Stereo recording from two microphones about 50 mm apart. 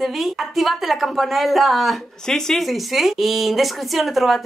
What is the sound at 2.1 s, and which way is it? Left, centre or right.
Speech, centre.